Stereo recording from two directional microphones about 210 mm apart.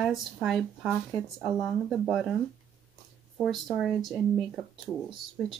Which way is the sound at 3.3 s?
Centre (ahead or behind).